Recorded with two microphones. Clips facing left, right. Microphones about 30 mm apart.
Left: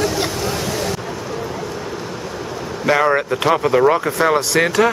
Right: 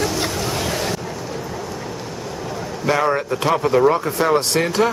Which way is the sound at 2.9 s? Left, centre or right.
Centre.